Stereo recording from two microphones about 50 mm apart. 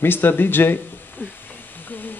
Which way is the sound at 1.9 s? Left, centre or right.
Left.